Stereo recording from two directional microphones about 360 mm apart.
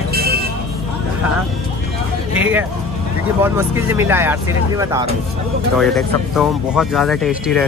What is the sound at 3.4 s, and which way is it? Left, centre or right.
Speech, centre.